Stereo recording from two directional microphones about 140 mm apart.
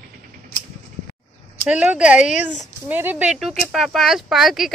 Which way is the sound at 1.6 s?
10° right (ahead or behind).